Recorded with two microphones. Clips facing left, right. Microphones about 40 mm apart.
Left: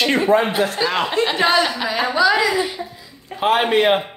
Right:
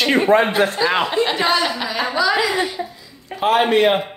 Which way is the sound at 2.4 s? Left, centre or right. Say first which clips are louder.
Left 1 dB; right.